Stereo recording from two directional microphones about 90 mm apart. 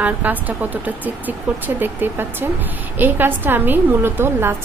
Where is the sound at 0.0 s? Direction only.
20° right (ahead or behind).